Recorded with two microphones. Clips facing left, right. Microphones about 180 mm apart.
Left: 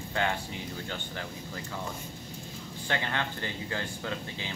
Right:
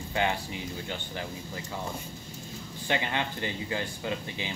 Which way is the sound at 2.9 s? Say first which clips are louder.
Right 2 dB; 15° right (ahead or behind).